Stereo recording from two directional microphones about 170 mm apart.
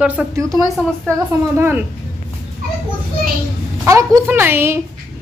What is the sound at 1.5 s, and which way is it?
Speech, 10° right (ahead or behind).